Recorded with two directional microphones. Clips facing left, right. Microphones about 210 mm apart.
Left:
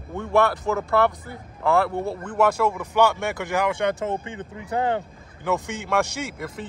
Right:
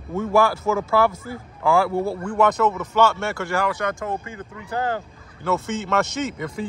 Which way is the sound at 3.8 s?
30° left (ahead or behind).